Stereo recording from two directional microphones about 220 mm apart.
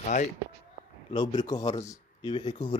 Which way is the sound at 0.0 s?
30° left (ahead or behind).